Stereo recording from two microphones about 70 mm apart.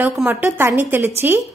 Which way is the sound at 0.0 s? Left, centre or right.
Right.